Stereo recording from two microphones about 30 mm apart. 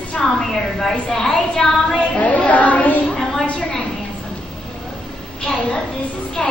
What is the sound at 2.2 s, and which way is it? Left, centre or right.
Speech, left.